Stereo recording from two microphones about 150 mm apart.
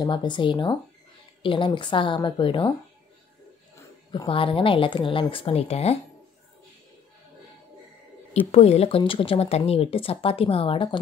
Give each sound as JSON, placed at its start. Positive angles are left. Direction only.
{"t": 0.0, "sound": "speech", "side_deg": 30}
{"t": 4.1, "sound": "speech", "side_deg": 35}
{"t": 8.3, "sound": "speech", "side_deg": 45}